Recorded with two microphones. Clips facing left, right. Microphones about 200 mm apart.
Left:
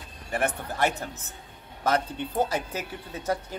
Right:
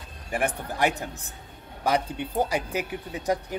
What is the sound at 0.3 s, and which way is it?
Speech, 15° right (ahead or behind).